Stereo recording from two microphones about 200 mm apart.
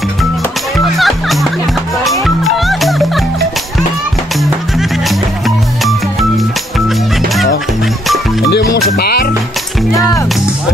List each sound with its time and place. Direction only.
0.7 s music: centre (ahead or behind)
4.4 s music: centre (ahead or behind)
8.9 s music: 50° left (ahead or behind)